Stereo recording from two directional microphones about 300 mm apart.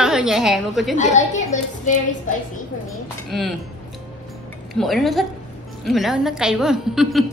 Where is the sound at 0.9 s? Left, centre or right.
Left.